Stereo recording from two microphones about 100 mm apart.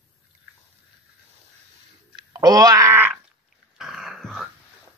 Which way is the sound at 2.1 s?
40° right (ahead or behind).